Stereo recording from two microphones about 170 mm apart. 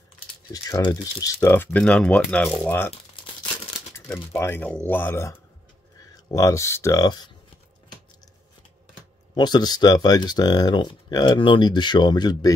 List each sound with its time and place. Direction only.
0.5 s speech: 20° left (ahead or behind)
3.9 s speech: 15° left (ahead or behind)
9.3 s speech: 25° left (ahead or behind)